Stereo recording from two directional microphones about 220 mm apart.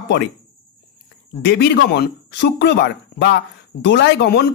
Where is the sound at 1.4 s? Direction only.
50° left (ahead or behind).